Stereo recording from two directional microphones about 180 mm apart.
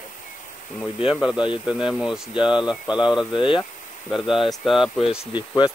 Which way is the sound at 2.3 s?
25° left (ahead or behind).